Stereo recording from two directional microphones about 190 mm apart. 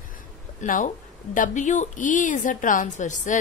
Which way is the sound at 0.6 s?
40° left (ahead or behind).